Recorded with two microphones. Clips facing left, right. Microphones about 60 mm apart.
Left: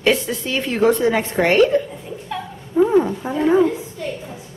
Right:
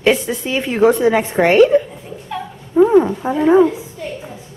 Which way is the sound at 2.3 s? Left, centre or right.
Centre.